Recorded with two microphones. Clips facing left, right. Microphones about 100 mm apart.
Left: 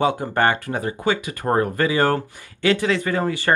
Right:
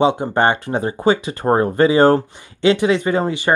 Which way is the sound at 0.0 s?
20° right (ahead or behind).